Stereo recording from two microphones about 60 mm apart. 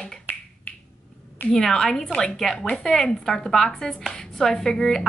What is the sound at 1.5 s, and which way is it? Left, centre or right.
A woman's voice, centre.